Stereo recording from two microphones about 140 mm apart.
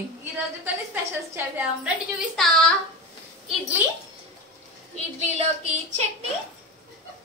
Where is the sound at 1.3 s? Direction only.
15° right (ahead or behind).